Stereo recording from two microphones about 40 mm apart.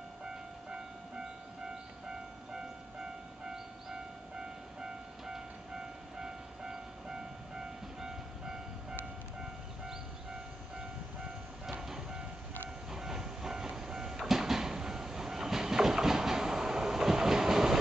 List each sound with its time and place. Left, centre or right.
0.2 s train: centre
2.0 s vehicle: centre
11.8 s train: centre
12.9 s vehicle: centre
14.2 s train: centre